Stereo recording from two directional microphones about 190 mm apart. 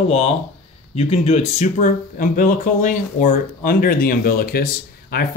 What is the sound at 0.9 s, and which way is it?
Speech, 35° left (ahead or behind).